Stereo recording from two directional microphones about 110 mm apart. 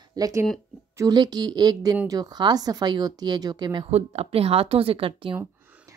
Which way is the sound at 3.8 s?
75° right (ahead or behind).